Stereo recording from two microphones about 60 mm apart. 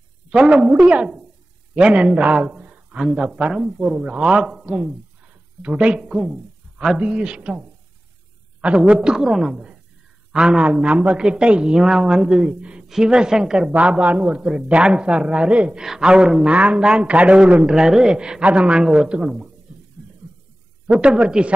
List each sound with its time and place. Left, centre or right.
0.3 s a woman's voice: centre
19.2 s speech: centre
20.8 s a woman's voice: centre